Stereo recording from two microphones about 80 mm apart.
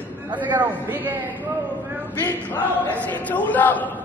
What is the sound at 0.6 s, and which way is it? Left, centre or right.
Speech, right.